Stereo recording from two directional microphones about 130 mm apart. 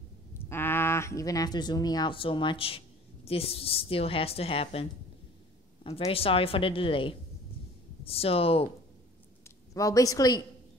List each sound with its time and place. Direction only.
0.5 s a woman's voice: 15° left (ahead or behind); by 4.8 s 45° left (ahead or behind)
5.9 s a woman's voice: 45° left (ahead or behind)
9.8 s a woman's voice: 25° left (ahead or behind)